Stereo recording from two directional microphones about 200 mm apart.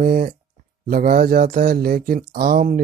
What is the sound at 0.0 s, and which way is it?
Speech, 45° right (ahead or behind).